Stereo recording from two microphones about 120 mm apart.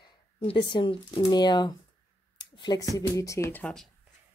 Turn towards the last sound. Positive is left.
turn(degrees=15)  # may be behind; listen again after turning